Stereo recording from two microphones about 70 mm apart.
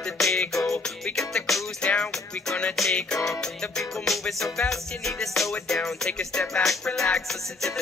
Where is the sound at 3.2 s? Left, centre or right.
Centre.